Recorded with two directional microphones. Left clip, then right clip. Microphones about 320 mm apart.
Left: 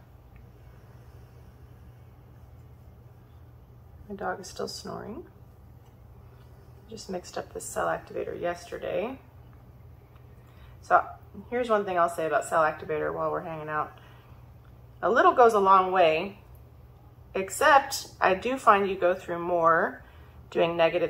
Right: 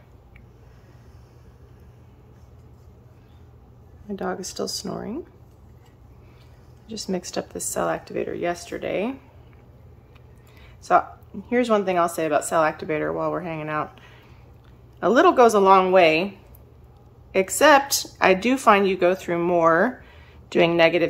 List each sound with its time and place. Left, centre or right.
4.1 s speech: right
6.9 s speech: right
10.8 s speech: right
17.3 s speech: right